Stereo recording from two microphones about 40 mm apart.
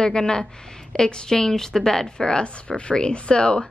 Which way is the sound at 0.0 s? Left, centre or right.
Centre.